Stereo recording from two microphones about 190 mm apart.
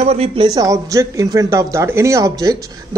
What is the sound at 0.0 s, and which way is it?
Speech, 30° right (ahead or behind).